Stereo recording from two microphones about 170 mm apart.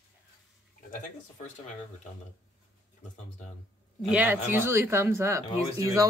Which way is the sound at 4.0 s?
5° right (ahead or behind).